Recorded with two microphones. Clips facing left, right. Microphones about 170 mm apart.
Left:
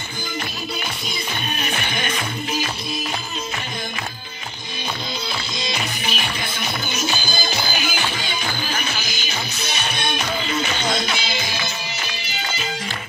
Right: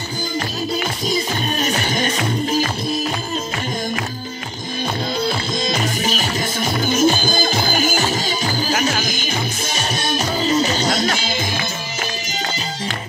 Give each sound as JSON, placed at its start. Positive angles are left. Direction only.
{"t": 1.0, "sound": "music", "side_deg": -40}
{"t": 5.2, "sound": "music", "side_deg": -45}